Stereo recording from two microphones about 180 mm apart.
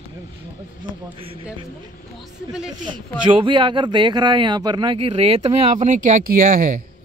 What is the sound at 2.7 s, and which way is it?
Speech, 25° right (ahead or behind).